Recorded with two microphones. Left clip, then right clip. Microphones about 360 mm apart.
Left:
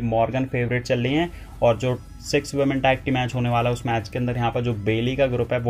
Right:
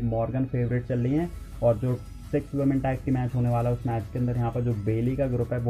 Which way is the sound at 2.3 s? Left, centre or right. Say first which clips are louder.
Left 5 dB; left.